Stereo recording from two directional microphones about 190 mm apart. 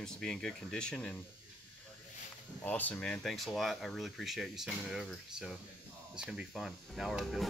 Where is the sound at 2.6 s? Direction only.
10° left (ahead or behind).